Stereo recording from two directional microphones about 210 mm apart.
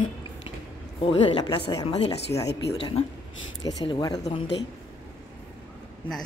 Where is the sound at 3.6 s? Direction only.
20° left (ahead or behind).